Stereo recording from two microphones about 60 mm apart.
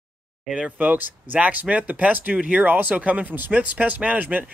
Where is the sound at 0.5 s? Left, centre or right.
Centre.